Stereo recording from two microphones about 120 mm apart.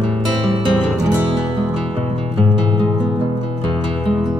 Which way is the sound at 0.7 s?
5° right (ahead or behind).